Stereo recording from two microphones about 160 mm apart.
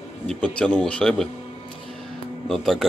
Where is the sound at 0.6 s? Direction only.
5° left (ahead or behind).